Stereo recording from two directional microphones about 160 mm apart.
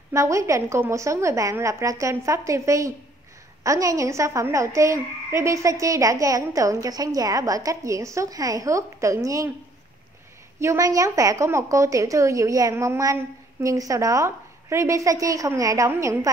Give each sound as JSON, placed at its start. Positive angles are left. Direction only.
{"t": 0.1, "sound": "a woman's voice", "side_deg": -20}
{"t": 10.6, "sound": "a woman's voice", "side_deg": -20}